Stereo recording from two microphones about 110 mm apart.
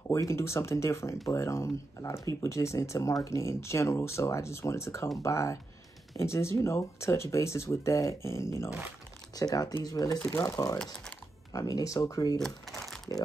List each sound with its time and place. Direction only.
0.1 s speech: 25° left (ahead or behind)
12.4 s speech: 5° left (ahead or behind)
12.8 s typing: centre (ahead or behind)